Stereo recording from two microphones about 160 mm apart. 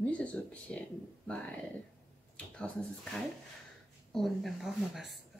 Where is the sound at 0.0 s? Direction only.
10° left (ahead or behind).